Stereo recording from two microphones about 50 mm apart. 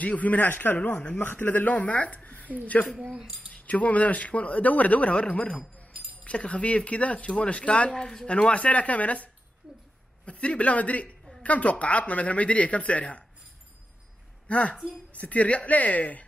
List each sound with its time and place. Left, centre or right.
0.0 s speech: left
7.9 s speech: centre; by 13.2 s left
14.5 s speech: left